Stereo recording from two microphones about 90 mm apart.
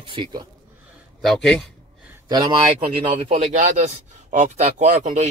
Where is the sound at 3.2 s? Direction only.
90° right.